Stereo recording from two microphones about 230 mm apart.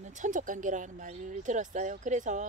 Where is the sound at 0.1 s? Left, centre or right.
Right.